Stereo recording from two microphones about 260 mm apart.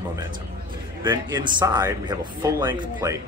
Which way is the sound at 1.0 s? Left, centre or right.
Centre.